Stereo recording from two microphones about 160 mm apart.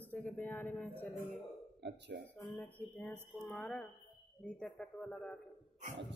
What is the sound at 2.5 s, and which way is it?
Music, 10° left (ahead or behind).